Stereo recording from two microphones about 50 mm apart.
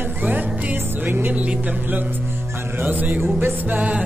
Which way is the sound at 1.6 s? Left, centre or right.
Right.